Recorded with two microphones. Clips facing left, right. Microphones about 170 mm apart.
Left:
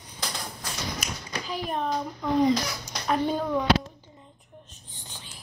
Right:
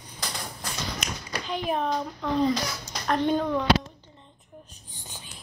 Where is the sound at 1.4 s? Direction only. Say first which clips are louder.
Right 2 dB; centre (ahead or behind).